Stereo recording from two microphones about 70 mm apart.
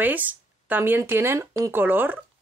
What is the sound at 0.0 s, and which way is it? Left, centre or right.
Speech, right.